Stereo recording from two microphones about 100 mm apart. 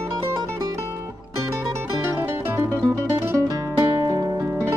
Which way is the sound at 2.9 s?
35° right (ahead or behind).